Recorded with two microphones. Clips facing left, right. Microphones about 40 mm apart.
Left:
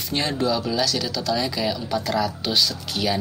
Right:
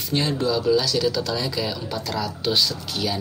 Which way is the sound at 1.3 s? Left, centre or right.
Centre.